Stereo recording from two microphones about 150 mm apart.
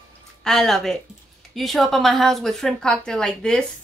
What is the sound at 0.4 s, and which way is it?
A woman's voice, centre (ahead or behind).